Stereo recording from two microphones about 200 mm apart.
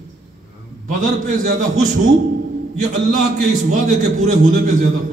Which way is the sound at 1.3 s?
40° right (ahead or behind).